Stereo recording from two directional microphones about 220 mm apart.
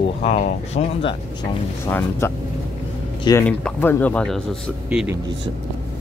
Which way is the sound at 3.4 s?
5° left (ahead or behind).